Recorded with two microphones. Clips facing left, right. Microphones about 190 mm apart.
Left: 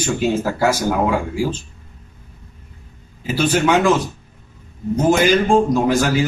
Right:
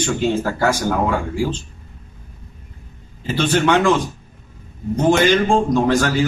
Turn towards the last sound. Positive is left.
turn(degrees=10)  # may be behind; listen again after turning